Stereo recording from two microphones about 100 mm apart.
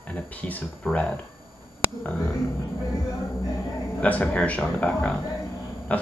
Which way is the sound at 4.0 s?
15° left (ahead or behind).